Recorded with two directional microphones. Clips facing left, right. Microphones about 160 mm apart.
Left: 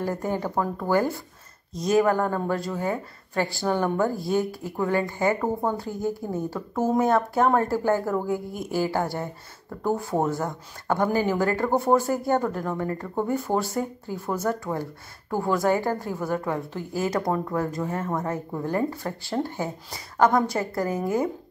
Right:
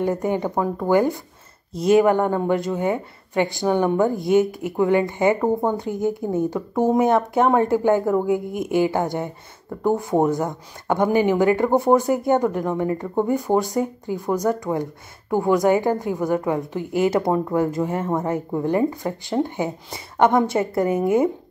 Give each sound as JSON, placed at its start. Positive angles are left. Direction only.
{"t": 0.0, "sound": "speech", "side_deg": -20}
{"t": 1.7, "sound": "a woman's voice", "side_deg": -30}
{"t": 18.6, "sound": "a woman's voice", "side_deg": -15}